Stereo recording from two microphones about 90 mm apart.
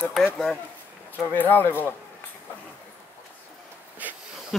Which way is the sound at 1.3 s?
20° left (ahead or behind).